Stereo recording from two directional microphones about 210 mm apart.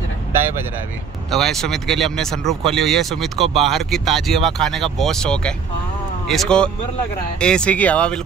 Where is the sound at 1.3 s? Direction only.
Centre (ahead or behind).